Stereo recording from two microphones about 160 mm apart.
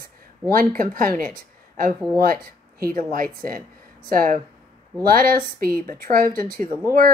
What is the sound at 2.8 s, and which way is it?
Speech, 60° right (ahead or behind).